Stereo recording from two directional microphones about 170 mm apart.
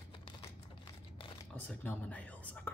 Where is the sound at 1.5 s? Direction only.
10° left (ahead or behind).